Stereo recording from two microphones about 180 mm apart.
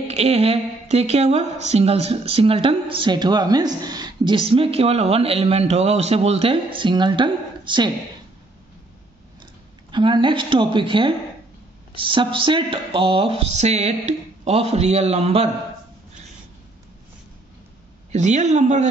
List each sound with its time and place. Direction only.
0.1 s a woman's voice: 35° right (ahead or behind)
9.8 s a woman's voice: 25° right (ahead or behind)
18.1 s a woman's voice: 40° right (ahead or behind)